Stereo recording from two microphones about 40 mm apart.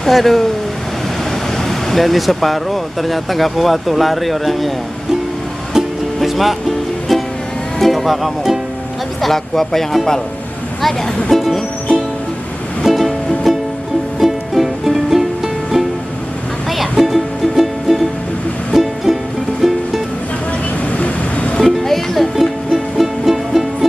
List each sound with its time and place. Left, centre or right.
0.0 s speech: centre
1.6 s speech: centre
6.1 s speech: centre
7.8 s speech: centre
11.2 s speech: centre
12.8 s music: centre
20.9 s vehicle: left
21.5 s music: centre
22.3 s music: centre